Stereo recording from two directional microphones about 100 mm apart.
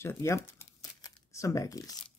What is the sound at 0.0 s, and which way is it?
Speech, 30° left (ahead or behind).